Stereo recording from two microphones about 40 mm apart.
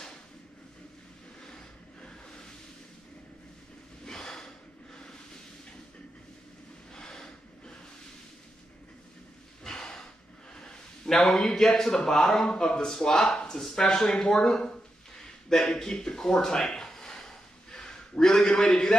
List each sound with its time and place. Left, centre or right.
2.0 s vehicle: left
4.1 s snort: centre
7.0 s snort: centre
9.7 s a sound: centre
10.5 s speech: centre
12.4 s speech: left
12.7 s speech: centre
15.1 s a sound: centre
18.1 s a sound: left
18.5 s speech: centre